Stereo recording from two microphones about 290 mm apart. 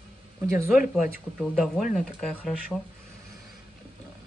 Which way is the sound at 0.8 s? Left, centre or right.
Left.